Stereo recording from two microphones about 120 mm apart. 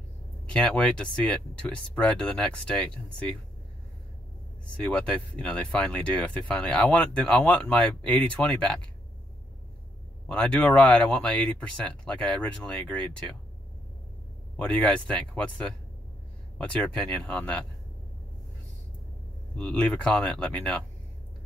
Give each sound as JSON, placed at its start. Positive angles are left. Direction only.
{"t": 0.5, "sound": "speech", "side_deg": 10}
{"t": 4.7, "sound": "speech", "side_deg": 10}
{"t": 10.2, "sound": "speech", "side_deg": 10}
{"t": 14.6, "sound": "speech", "side_deg": 10}
{"t": 19.5, "sound": "speech", "side_deg": 10}